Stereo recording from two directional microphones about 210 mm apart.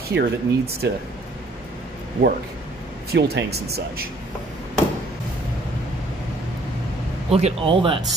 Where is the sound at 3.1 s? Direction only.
50° right (ahead or behind).